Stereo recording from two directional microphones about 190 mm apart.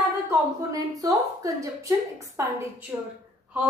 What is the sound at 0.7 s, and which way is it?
A woman's voice, 20° right (ahead or behind).